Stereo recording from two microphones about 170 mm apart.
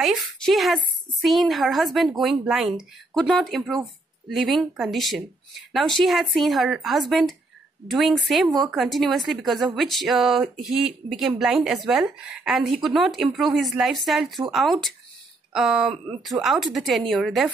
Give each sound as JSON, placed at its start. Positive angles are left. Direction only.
{"t": 0.0, "sound": "a woman's voice", "side_deg": 0}